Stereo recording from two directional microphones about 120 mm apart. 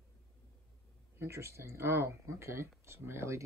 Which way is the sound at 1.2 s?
20° right (ahead or behind).